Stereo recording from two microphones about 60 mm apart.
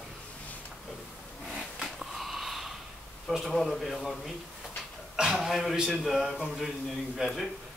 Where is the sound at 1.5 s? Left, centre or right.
Centre.